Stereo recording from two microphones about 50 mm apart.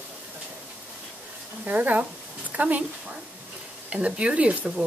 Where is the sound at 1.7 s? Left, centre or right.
Right.